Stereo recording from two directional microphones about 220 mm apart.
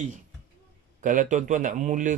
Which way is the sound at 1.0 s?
35° right (ahead or behind).